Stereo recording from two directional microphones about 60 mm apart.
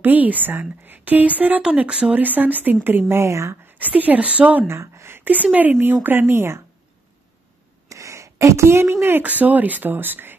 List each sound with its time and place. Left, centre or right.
0.0 s a woman's voice: right
2.1 s a woman's voice: right
3.1 s speech: right
3.6 s a woman's voice: right
4.6 s speech: right
5.2 s a woman's voice: right
7.9 s a sound: right
9.2 s speech: right